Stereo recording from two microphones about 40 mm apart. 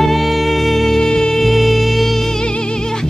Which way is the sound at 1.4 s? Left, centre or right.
Centre.